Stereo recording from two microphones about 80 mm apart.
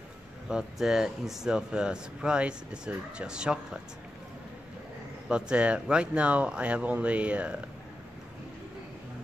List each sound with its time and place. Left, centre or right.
0.5 s speech: centre
5.3 s speech: centre